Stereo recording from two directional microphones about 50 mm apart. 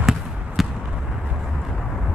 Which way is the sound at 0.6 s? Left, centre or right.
Centre.